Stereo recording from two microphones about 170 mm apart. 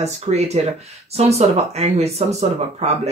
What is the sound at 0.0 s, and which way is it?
Speech, 40° right (ahead or behind).